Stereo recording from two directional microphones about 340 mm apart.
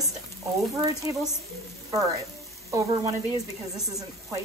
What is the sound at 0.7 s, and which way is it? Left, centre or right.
Speech, centre.